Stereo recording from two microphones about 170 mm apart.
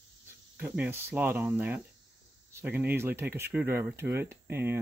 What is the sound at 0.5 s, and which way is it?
Speech, 10° right (ahead or behind).